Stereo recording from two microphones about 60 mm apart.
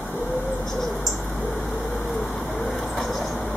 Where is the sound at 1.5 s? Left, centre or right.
Centre.